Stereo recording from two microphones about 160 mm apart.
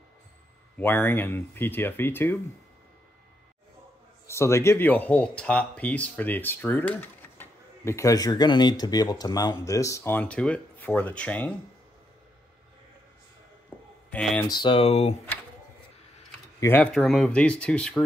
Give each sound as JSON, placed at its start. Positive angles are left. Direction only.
{"t": 0.7, "sound": "speech", "side_deg": 10}
{"t": 4.3, "sound": "speech", "side_deg": 15}
{"t": 13.7, "sound": "a sound", "side_deg": 15}
{"t": 14.1, "sound": "speech", "side_deg": 10}
{"t": 14.5, "sound": "speech", "side_deg": 30}
{"t": 16.5, "sound": "speech", "side_deg": 15}